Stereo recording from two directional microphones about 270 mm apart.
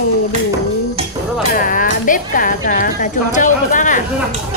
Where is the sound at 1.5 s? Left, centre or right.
Left.